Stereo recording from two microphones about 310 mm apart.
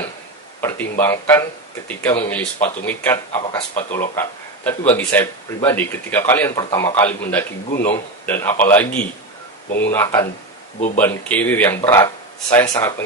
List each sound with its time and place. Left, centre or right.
0.6 s speech: centre
3.3 s speech: centre
3.9 s speech: centre